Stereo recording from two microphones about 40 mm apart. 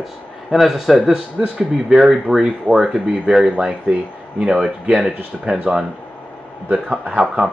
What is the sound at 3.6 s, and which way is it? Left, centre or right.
Speech, right.